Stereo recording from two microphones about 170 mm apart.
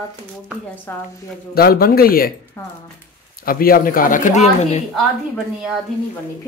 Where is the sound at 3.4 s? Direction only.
60° left (ahead or behind); by 4.8 s 40° left (ahead or behind).